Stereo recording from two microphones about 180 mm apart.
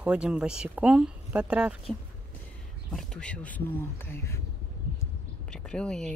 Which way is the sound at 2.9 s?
5° left (ahead or behind).